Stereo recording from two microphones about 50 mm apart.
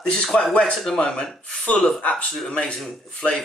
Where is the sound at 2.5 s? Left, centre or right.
Centre.